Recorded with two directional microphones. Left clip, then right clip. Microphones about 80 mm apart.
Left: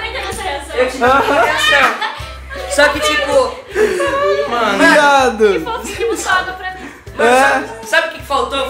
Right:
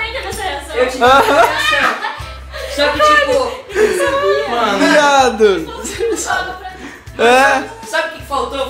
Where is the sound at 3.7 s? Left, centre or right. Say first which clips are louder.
Right 1 dB; centre.